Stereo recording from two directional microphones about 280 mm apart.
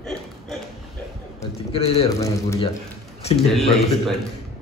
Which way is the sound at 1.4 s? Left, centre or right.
Left.